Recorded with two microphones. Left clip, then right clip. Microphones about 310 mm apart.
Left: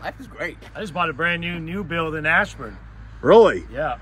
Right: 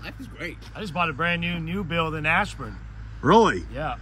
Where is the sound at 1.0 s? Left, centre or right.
Right.